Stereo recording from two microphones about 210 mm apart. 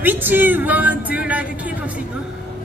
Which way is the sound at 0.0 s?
10° right (ahead or behind).